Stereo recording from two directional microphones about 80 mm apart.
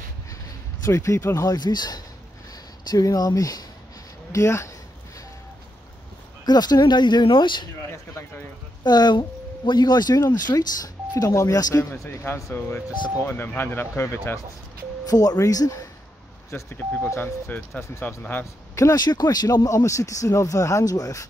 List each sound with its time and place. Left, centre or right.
0.8 s speech: left
1.5 s speech: left
6.4 s speech: left
8.8 s speech: left
12.0 s speech: left
15.0 s speech: left
16.4 s speech: left
18.0 s speech: left
18.4 s speech: left
18.9 s speech: left